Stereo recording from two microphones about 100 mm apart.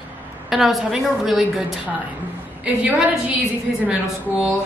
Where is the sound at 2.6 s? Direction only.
15° right (ahead or behind).